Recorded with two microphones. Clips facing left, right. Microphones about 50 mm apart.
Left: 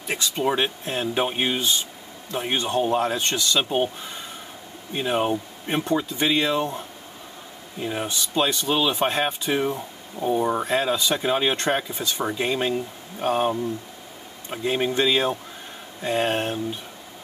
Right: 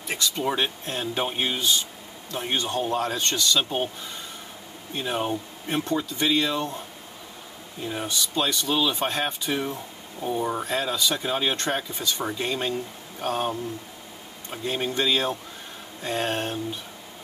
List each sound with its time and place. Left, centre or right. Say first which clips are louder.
0.1 s speech: left 3 dB; centre
7.8 s speech: left 2 dB; centre